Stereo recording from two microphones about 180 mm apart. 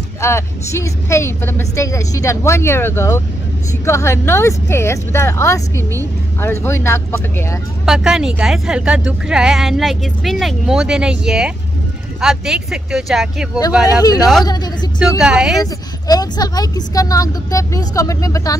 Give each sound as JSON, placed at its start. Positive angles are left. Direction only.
{"t": 0.2, "sound": "a woman's voice", "side_deg": 15}
{"t": 7.8, "sound": "speech", "side_deg": -5}
{"t": 13.8, "sound": "speech", "side_deg": 20}
{"t": 15.0, "sound": "speech", "side_deg": -5}
{"t": 15.6, "sound": "speech", "side_deg": 20}